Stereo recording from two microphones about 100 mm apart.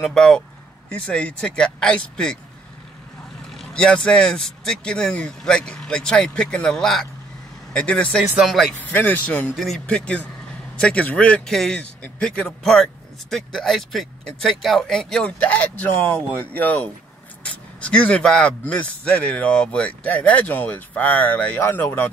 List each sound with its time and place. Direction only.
0.0 s speech: 5° left (ahead or behind)
3.5 s speech: 10° left (ahead or behind)
8.2 s speech: centre (ahead or behind)
8.7 s speech: 15° left (ahead or behind)